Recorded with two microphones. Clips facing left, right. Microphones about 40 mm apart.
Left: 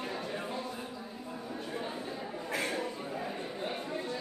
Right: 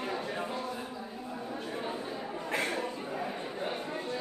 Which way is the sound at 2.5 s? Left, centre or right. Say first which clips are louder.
Right 1 dB; centre.